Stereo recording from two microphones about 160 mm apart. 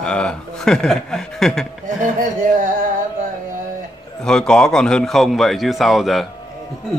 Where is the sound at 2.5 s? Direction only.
55° right (ahead or behind).